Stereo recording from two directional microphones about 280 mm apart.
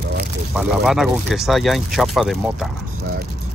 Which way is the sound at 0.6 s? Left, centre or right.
Centre.